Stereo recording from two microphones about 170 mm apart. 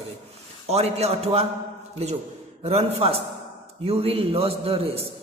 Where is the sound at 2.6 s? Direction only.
35° right (ahead or behind).